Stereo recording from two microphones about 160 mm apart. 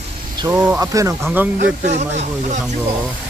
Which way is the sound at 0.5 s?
15° right (ahead or behind).